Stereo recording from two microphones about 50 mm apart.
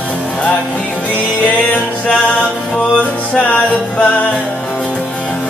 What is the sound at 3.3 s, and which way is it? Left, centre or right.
Music, left.